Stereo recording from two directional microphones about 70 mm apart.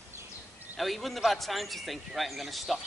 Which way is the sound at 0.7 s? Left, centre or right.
Centre.